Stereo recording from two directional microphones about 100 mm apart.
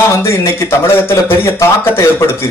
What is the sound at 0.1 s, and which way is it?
A man's voice, 25° left (ahead or behind).